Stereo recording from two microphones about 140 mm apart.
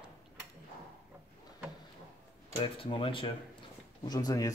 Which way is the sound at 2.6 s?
40° left (ahead or behind).